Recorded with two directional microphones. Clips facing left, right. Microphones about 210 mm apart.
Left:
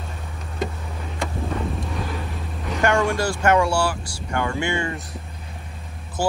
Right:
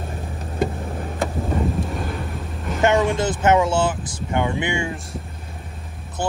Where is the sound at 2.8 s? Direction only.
20° right (ahead or behind).